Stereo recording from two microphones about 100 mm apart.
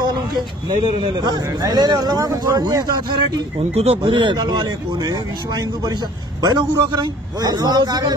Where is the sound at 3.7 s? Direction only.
90° right.